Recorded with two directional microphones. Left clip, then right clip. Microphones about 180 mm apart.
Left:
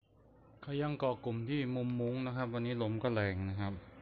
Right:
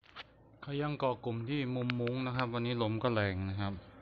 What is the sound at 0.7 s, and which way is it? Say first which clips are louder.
A man's voice: right 1 dB; centre (ahead or behind).